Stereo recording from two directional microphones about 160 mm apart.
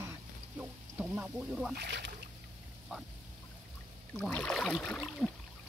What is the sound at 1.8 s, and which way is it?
Speech, 90° right.